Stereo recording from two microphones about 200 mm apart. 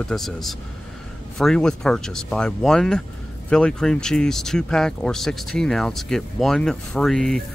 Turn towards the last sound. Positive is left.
turn(degrees=0)  # may be behind; listen again after turning